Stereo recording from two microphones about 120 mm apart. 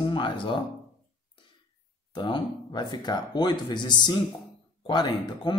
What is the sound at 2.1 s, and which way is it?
Speech, 40° left (ahead or behind).